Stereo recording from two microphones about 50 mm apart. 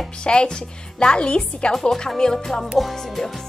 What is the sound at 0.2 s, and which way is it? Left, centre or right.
A woman's voice, centre.